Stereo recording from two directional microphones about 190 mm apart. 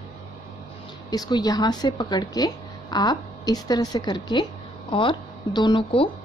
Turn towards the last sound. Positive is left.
turn(degrees=30)  # may be behind; listen again after turning